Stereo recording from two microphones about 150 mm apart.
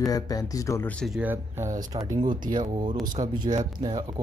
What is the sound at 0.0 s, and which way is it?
Speech, 25° left (ahead or behind).